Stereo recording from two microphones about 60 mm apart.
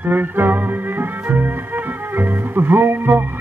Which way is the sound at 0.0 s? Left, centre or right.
Right.